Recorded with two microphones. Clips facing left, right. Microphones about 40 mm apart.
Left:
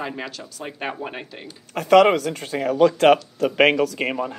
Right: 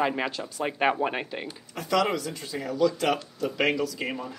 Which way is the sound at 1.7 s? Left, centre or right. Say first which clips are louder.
Left 11 dB; left.